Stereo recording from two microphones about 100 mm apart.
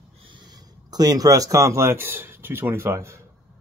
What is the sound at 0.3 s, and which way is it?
Speech, 45° right (ahead or behind).